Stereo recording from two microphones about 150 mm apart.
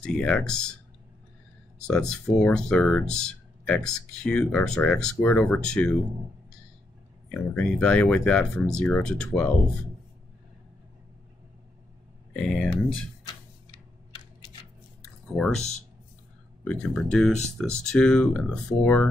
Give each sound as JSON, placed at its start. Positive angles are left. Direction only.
{"t": 0.0, "sound": "speech", "side_deg": 5}
{"t": 1.8, "sound": "speech", "side_deg": 5}
{"t": 7.2, "sound": "speech", "side_deg": 5}
{"t": 12.4, "sound": "speech", "side_deg": 5}
{"t": 13.3, "sound": "a sound", "side_deg": 30}
{"t": 15.3, "sound": "speech", "side_deg": 5}
{"t": 16.6, "sound": "speech", "side_deg": 5}